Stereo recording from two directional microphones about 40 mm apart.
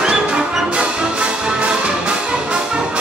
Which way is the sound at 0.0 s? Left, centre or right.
Right.